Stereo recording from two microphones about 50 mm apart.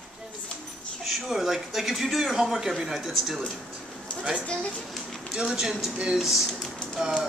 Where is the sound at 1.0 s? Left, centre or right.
Centre.